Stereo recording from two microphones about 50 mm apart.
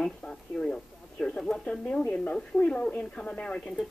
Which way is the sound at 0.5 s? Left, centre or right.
Centre.